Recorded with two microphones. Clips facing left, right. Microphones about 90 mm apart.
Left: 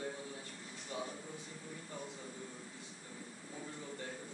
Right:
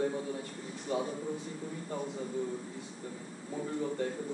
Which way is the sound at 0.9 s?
60° right (ahead or behind).